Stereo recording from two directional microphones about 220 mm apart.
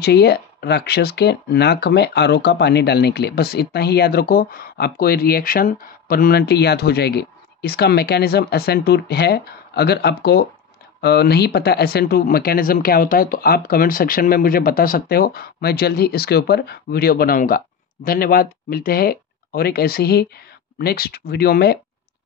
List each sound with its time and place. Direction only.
0.0 s speech: 50° left (ahead or behind)